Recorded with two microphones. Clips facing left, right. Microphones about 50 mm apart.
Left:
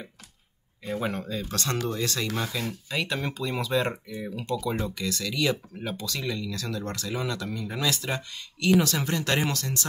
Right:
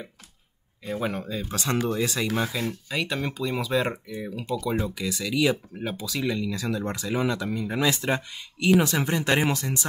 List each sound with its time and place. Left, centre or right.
0.8 s speech: centre